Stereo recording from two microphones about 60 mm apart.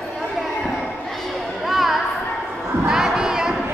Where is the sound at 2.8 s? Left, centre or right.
Centre.